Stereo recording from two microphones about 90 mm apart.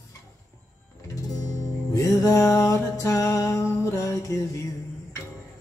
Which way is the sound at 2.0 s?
40° left (ahead or behind).